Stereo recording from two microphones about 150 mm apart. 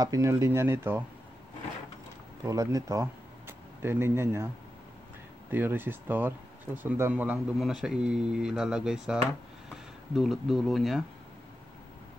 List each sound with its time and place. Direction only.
0.0 s speech: 20° right (ahead or behind)
2.4 s speech: 20° right (ahead or behind)
5.5 s speech: 15° right (ahead or behind)